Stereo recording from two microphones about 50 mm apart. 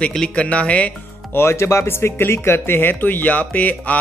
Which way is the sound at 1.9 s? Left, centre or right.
Left.